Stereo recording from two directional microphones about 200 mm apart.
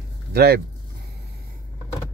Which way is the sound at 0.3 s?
50° right (ahead or behind).